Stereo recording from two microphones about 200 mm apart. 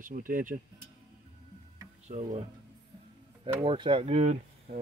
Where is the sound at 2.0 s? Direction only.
35° right (ahead or behind).